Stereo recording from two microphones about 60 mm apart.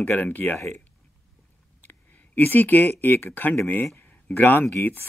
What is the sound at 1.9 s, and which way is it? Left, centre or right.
Speech, left.